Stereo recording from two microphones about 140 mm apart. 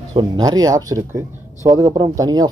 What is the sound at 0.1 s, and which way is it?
Speech, 30° right (ahead or behind).